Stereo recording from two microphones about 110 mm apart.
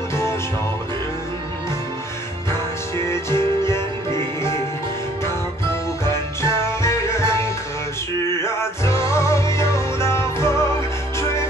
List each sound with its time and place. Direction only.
0.1 s music: 25° left (ahead or behind)
3.1 s music: 25° left (ahead or behind)
6.6 s music: 25° left (ahead or behind)
8.5 s music: 25° left (ahead or behind)